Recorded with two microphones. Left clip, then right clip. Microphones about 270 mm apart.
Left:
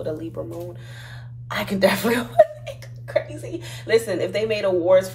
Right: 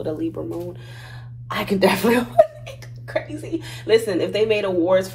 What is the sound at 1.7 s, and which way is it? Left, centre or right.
A woman's voice, centre.